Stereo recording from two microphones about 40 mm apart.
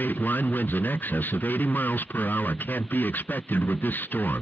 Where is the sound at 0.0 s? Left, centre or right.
Left.